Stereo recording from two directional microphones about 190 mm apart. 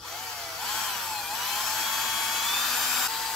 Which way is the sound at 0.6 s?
Centre (ahead or behind).